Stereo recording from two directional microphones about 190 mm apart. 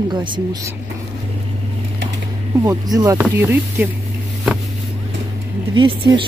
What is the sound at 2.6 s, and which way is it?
Speech, 20° right (ahead or behind).